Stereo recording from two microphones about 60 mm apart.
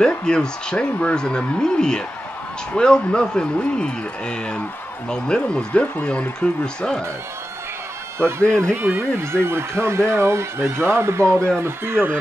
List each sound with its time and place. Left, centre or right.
0.2 s a man's voice: centre
8.2 s speech: right
8.7 s speech: right